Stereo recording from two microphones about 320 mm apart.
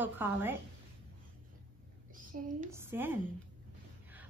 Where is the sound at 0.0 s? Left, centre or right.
Centre.